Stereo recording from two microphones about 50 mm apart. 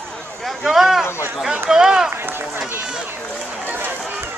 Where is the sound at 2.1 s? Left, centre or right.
Right.